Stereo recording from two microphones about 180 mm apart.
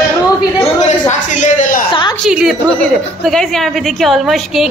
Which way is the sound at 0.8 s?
45° left (ahead or behind).